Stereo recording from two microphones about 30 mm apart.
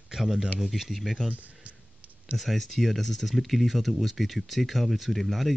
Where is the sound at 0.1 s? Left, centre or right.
Centre.